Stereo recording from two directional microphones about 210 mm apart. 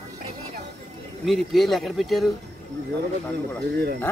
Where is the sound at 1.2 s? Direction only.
Centre (ahead or behind).